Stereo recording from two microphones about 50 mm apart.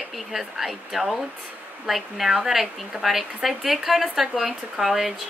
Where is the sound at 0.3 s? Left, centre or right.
Centre.